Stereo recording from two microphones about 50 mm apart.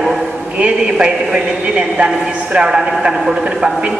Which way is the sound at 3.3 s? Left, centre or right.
Centre.